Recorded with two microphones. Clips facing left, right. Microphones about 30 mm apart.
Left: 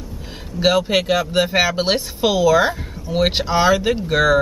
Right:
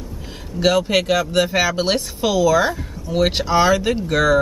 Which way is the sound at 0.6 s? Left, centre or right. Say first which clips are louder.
Even; centre.